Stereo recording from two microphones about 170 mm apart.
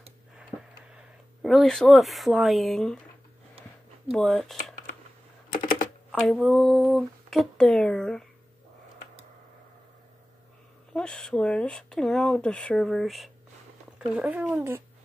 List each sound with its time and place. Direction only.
0.9 s speech: centre (ahead or behind)
4.1 s speech: centre (ahead or behind)
5.5 s typing: 50° left (ahead or behind)
6.1 s speech: centre (ahead or behind)
10.9 s speech: 5° left (ahead or behind)